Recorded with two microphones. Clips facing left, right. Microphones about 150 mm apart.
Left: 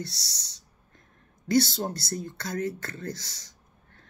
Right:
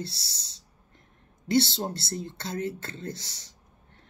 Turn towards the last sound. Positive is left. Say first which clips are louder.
# left 1 dB
turn(degrees=-20)  # may be behind; listen again after turning